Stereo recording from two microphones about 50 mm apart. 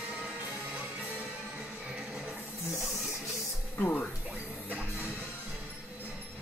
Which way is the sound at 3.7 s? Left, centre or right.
Left.